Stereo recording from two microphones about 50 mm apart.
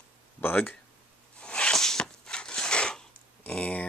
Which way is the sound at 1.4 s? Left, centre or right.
Centre.